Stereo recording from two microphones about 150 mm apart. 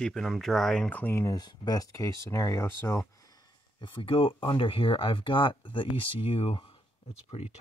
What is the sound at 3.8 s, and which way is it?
Speech, 35° left (ahead or behind).